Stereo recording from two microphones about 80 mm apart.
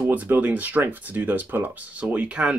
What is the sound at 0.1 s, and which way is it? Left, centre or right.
Speech, right.